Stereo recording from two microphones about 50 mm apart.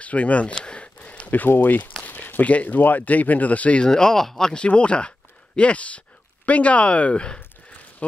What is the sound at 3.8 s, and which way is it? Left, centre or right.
Speech, centre.